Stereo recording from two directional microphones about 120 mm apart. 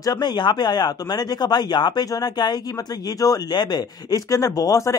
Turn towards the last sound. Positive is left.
turn(degrees=30)  # may be behind; listen again after turning